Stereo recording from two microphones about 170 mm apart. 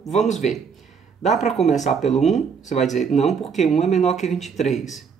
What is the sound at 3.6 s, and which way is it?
Speech, 40° left (ahead or behind).